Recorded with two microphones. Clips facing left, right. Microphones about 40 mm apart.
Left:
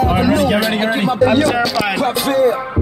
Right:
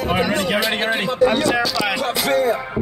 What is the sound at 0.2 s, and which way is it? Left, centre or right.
Music, centre.